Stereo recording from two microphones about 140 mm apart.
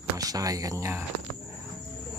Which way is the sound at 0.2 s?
25° right (ahead or behind).